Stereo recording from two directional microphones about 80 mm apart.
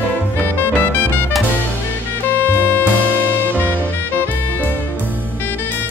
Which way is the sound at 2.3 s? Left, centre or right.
Left.